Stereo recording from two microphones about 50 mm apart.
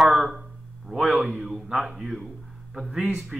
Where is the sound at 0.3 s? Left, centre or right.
Centre.